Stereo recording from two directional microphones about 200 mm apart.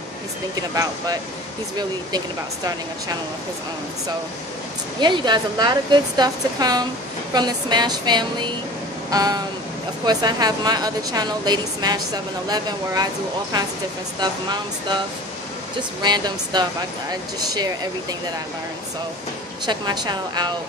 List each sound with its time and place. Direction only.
0.6 s a woman's voice: 20° right (ahead or behind)
5.0 s a woman's voice: 20° right (ahead or behind)
16.0 s a woman's voice: 20° right (ahead or behind)
19.6 s a woman's voice: 20° right (ahead or behind)